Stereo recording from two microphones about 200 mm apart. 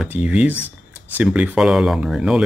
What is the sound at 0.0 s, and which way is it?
Speech, 5° right (ahead or behind).